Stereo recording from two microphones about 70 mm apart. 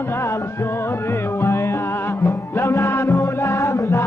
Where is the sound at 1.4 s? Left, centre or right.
Left.